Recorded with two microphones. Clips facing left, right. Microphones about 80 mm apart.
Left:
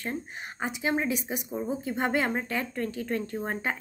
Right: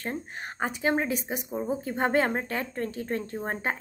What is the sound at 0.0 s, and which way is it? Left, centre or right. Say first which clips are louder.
Speech: right 1 dB; right.